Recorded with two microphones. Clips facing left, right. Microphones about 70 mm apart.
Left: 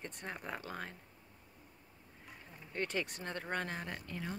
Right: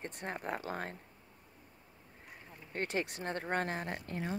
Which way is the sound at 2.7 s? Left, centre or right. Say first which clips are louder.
Right 2 dB; right.